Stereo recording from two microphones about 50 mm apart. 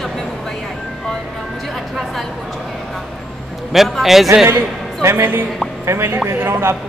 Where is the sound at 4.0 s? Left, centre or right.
Centre.